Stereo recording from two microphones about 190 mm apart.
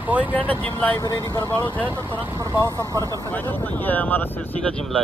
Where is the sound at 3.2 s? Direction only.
10° left (ahead or behind).